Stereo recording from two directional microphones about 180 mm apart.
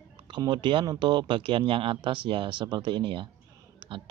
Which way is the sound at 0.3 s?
25° right (ahead or behind).